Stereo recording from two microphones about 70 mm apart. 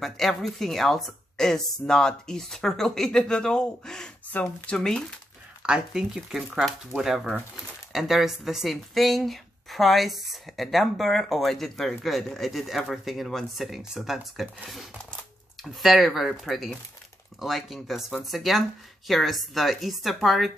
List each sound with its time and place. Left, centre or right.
0.0 s a woman's voice: centre
4.3 s a woman's voice: left
5.6 s speech: centre